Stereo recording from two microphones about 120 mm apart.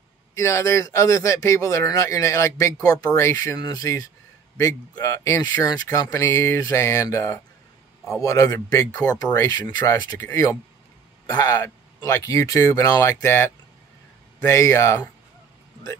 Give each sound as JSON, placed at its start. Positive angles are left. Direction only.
{"t": 0.3, "sound": "speech", "side_deg": 25}
{"t": 3.5, "sound": "speech", "side_deg": 35}